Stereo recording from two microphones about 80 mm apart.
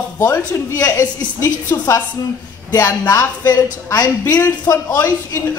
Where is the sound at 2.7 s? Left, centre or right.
Left.